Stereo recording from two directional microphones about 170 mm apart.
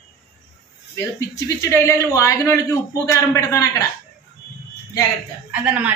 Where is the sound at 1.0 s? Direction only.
20° left (ahead or behind).